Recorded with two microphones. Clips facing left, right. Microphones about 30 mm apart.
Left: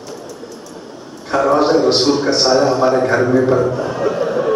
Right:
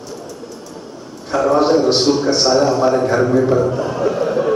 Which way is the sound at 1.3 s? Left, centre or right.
Left.